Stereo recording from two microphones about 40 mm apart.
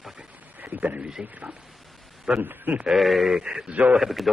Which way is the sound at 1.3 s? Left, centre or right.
Right.